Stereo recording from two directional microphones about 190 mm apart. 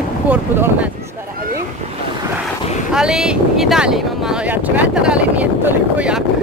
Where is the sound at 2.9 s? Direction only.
5° right (ahead or behind).